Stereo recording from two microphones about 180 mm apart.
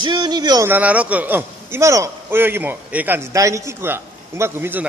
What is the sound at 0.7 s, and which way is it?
A man's voice, 10° right (ahead or behind).